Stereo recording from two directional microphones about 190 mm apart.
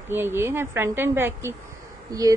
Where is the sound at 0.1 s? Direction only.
10° right (ahead or behind).